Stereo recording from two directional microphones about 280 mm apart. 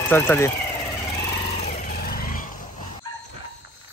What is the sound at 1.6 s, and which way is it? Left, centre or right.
Vehicle, left.